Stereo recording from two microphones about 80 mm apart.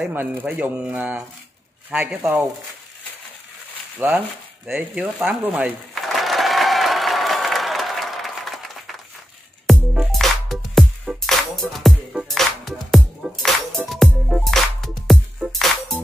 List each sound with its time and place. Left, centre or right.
0.0 s speech: right
4.0 s speech: right
6.2 s applause: centre
9.7 s music: centre